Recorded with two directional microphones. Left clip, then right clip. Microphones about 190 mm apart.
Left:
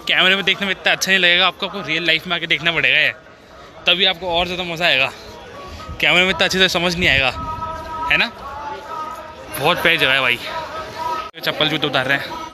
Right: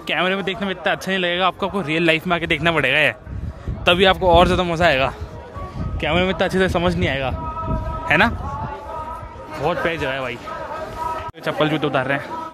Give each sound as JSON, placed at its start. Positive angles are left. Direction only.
{"t": 0.0, "sound": "speech", "side_deg": -15}
{"t": 1.7, "sound": "a man's voice", "side_deg": -30}
{"t": 5.9, "sound": "speech", "side_deg": -15}
{"t": 9.6, "sound": "speech", "side_deg": 0}
{"t": 11.4, "sound": "speech", "side_deg": -15}